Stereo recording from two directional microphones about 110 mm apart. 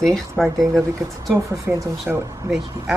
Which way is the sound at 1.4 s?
30° right (ahead or behind).